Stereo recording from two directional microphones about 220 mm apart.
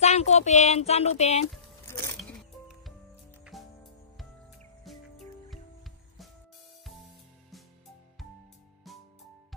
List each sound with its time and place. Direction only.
0.0 s speech: 30° left (ahead or behind)
1.9 s biting: 10° left (ahead or behind)
3.5 s music: centre (ahead or behind)
4.9 s music: centre (ahead or behind)